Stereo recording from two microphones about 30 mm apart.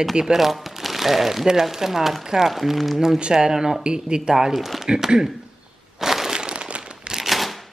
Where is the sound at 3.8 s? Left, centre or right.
Right.